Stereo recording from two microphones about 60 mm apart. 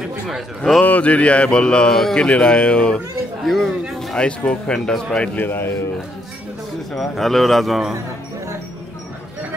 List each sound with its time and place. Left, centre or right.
0.8 s mantra: left
3.4 s a man's voice: centre
4.2 s mantra: centre
5.3 s a man's voice: left
6.9 s a man's voice: centre